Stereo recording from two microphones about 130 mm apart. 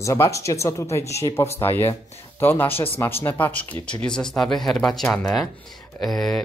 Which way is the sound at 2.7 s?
45° left (ahead or behind).